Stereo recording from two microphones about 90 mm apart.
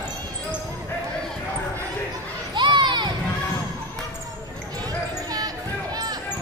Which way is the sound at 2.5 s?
60° right (ahead or behind).